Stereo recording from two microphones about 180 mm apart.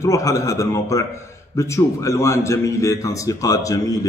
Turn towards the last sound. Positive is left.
turn(degrees=20)  # may be behind; listen again after turning